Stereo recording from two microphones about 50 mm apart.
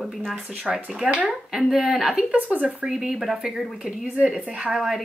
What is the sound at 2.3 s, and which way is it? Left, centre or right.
Speech, right.